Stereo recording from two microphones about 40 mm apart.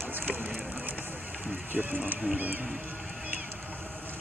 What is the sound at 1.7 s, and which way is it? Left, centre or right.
Speech, right.